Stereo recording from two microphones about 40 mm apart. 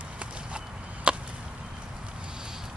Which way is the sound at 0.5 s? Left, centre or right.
Right.